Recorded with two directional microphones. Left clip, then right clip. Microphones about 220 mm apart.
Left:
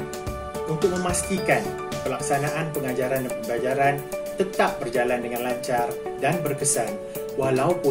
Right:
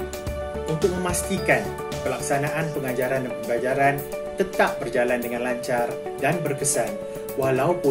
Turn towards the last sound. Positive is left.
turn(degrees=-5)  # may be behind; listen again after turning